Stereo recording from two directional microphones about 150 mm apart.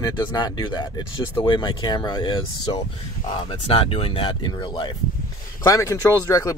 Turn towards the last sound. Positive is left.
turn(degrees=20)  # may be behind; listen again after turning